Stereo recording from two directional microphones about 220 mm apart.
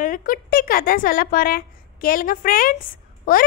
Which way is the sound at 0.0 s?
40° left (ahead or behind).